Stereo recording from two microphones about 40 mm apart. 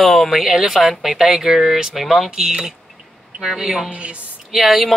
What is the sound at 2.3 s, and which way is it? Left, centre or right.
Speech, centre.